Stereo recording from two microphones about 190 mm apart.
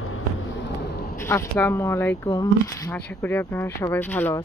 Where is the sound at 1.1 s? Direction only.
15° left (ahead or behind).